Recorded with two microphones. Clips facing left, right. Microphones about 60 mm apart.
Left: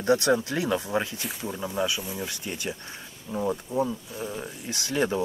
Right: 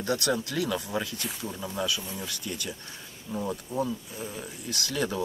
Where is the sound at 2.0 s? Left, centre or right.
Centre.